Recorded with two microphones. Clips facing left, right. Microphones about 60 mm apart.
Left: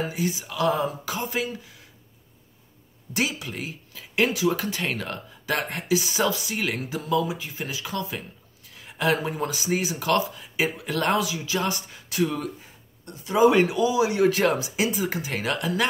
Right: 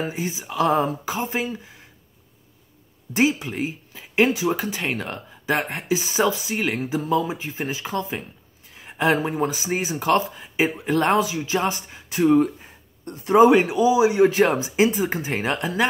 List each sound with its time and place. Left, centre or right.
0.0 s speech: right
3.1 s speech: right
13.0 s speech: right
13.5 s speech: centre